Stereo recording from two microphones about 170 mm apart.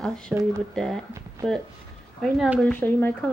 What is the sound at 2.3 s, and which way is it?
Speech, centre (ahead or behind).